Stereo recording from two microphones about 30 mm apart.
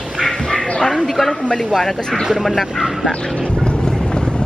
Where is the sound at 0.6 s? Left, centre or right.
Left.